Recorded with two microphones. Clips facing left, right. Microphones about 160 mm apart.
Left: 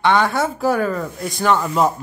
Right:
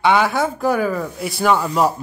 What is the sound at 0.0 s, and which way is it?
Speech, 10° right (ahead or behind).